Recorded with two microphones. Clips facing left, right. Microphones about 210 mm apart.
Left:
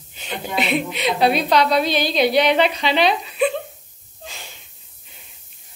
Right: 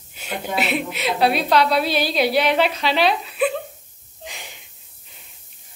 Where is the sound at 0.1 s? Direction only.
5° right (ahead or behind).